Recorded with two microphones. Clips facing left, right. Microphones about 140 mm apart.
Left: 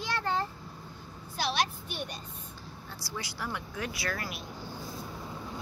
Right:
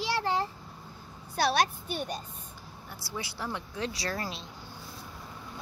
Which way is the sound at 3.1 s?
25° right (ahead or behind).